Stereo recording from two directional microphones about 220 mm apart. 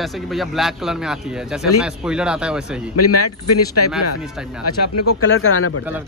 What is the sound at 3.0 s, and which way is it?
Speech, 90° left.